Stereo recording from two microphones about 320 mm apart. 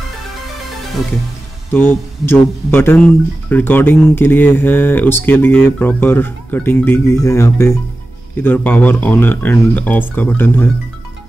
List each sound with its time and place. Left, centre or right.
1.7 s speech: centre